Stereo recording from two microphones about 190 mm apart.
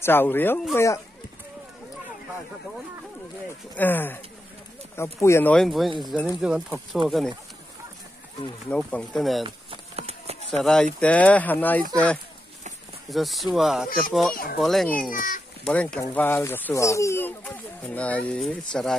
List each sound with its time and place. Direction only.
0.0 s speech: 10° left (ahead or behind)
3.7 s speech: 10° left (ahead or behind)
8.6 s speech: 5° left (ahead or behind)
9.4 s a sound: 30° right (ahead or behind)
10.5 s speech: 5° left (ahead or behind)
14.3 s speech: 50° left (ahead or behind)
14.6 s speech: centre (ahead or behind)
15.0 s speech: 45° left (ahead or behind)
15.6 s speech: 5° left (ahead or behind)